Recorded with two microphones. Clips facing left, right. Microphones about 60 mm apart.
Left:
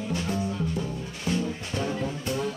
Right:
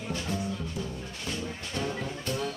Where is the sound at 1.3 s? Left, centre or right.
Centre.